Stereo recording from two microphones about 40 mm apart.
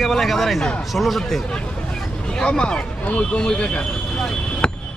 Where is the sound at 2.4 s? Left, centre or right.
Left.